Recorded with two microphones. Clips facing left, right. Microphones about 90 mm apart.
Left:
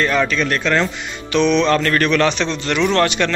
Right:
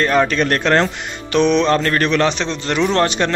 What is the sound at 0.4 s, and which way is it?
Speech, 50° right (ahead or behind).